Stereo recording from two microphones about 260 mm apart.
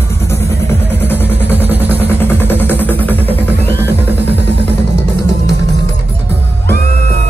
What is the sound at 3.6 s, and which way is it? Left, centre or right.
Music, centre.